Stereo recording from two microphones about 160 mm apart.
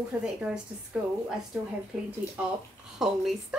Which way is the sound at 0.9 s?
5° right (ahead or behind).